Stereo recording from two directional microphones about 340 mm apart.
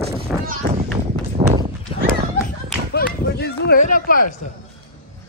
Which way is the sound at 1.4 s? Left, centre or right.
Centre.